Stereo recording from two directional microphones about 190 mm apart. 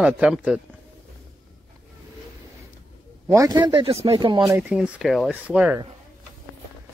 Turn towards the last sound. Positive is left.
turn(degrees=-5)  # may be behind; listen again after turning